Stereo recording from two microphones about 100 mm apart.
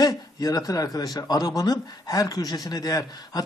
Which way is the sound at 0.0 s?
40° left (ahead or behind).